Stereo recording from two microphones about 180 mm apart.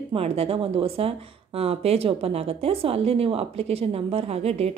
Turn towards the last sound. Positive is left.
turn(degrees=-35)  # may be behind; listen again after turning